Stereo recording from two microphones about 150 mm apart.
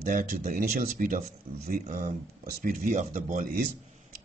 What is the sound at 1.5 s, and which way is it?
Speech, 45° right (ahead or behind).